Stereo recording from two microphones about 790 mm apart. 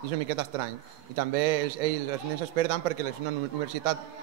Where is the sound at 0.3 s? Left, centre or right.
Right.